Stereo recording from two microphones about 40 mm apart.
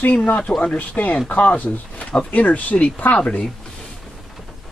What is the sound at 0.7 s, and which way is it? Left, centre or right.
Speech, left.